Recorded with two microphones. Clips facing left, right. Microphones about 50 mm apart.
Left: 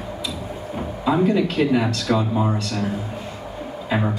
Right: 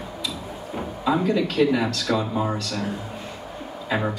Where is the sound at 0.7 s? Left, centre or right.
Centre.